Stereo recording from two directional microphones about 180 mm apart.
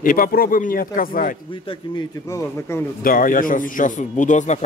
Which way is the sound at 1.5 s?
25° left (ahead or behind).